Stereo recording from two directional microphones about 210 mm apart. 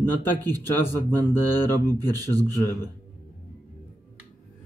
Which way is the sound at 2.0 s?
15° right (ahead or behind).